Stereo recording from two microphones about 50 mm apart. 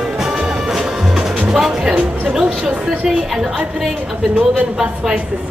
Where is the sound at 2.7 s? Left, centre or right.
Right.